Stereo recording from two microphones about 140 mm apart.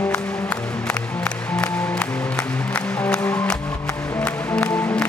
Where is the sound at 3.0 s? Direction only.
10° left (ahead or behind).